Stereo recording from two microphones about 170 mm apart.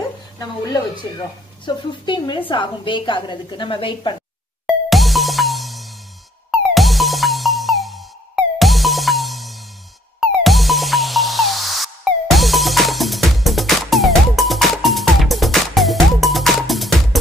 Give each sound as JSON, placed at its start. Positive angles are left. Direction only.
{"t": 1.7, "sound": "a woman's voice", "side_deg": 25}
{"t": 4.6, "sound": "music", "side_deg": 0}